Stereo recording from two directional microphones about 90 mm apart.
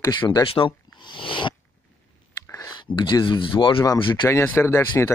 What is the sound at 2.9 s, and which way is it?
Speech, 60° left (ahead or behind).